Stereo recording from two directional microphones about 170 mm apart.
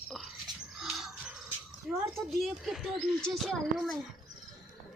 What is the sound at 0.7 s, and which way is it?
Music, centre (ahead or behind).